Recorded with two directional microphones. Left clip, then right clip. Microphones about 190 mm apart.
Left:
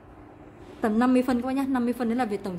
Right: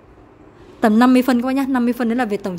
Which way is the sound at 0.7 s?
50° right (ahead or behind).